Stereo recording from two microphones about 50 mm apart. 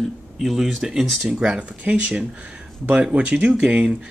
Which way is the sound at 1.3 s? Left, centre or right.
Centre.